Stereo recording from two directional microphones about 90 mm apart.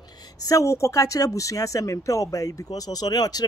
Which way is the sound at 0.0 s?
45° left (ahead or behind).